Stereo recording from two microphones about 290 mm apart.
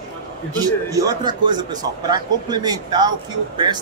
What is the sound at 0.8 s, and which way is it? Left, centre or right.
A woman's voice, centre.